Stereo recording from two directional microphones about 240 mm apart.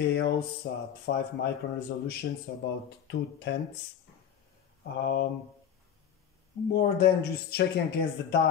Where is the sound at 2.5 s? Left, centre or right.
Left.